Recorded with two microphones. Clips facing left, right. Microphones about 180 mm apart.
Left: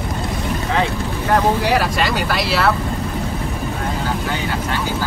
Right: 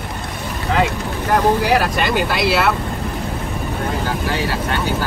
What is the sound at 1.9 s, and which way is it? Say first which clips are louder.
Speech: right 1 dB; 20° right (ahead or behind).